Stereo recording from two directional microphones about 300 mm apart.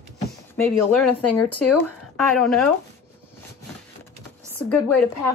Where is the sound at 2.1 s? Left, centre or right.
Centre.